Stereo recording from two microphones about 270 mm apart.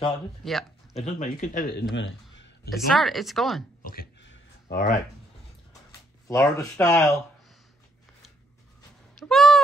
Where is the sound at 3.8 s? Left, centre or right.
Left.